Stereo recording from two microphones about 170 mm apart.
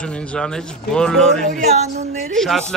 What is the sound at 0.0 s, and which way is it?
Speech, 5° left (ahead or behind).